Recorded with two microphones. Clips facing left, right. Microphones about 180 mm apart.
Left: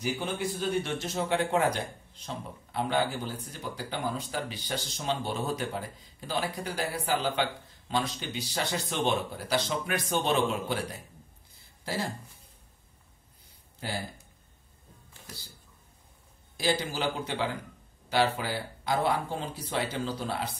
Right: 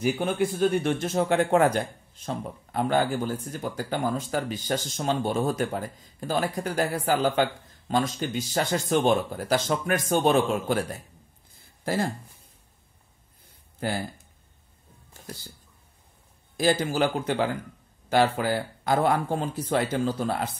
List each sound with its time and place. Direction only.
0.0 s speech: 55° right (ahead or behind)
13.7 s speech: 55° right (ahead or behind)
16.5 s speech: 50° right (ahead or behind)